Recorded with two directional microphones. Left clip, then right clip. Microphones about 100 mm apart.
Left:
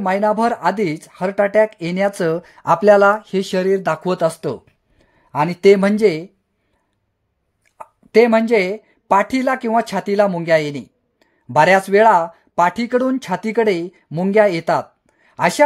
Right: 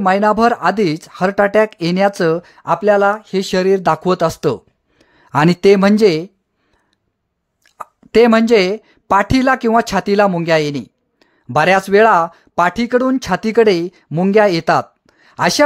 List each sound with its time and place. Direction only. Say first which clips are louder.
0.0 s speech: right 4 dB; 30° right (ahead or behind)
2.6 s speech: left 2 dB; 10° left (ahead or behind)
3.0 s speech: left 1 dB; 5° right (ahead or behind)
3.3 s speech: right 3 dB; 25° right (ahead or behind)
4.4 s a sound: right 7 dB; 40° right (ahead or behind)
5.3 s speech: right 5 dB; 70° right (ahead or behind)
5.6 s speech: even; 30° right (ahead or behind)
7.7 s speech: right 1 dB; 45° right (ahead or behind)